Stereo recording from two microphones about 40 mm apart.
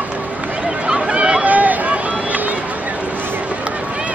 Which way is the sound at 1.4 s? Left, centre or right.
Right.